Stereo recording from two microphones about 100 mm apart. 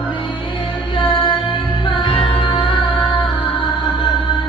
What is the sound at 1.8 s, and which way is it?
Music, 55° left (ahead or behind).